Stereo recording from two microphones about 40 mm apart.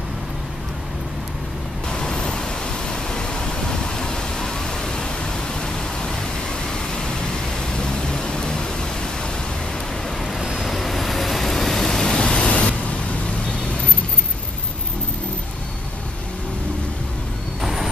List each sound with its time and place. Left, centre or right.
1.9 s pink noise: left
2.9 s a sound: centre
6.7 s vehicle: left
7.7 s pink noise: left
10.4 s vehicle: centre
10.7 s vehicle: centre
12.5 s a sound: left
17.6 s vehicle: centre